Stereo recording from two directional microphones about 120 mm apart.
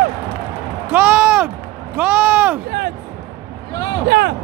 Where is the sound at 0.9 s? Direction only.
10° right (ahead or behind).